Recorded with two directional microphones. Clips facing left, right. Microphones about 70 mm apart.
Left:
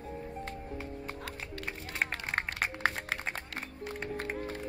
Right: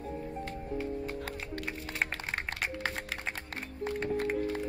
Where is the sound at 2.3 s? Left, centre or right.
Left.